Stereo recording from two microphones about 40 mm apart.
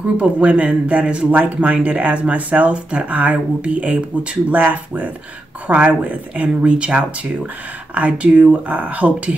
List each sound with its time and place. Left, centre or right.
0.2 s speech: right
4.5 s speech: right